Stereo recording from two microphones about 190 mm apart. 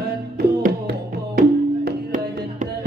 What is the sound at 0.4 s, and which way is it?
Music, 50° right (ahead or behind).